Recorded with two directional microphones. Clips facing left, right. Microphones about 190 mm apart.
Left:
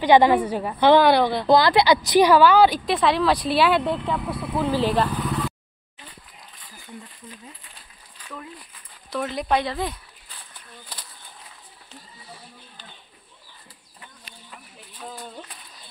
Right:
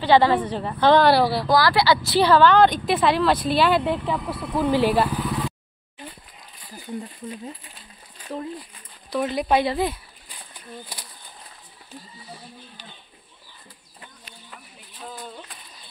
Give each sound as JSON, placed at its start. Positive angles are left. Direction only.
{"t": 0.0, "sound": "a woman's voice", "side_deg": 15}
{"t": 1.0, "sound": "speech", "side_deg": -5}
{"t": 1.5, "sound": "speech", "side_deg": 20}
{"t": 4.6, "sound": "speech", "side_deg": -15}
{"t": 8.2, "sound": "speech", "side_deg": -30}
{"t": 9.1, "sound": "speech", "side_deg": -5}